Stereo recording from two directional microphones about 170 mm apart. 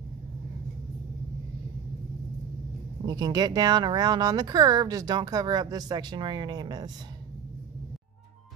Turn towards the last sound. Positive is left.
turn(degrees=-25)  # may be behind; listen again after turning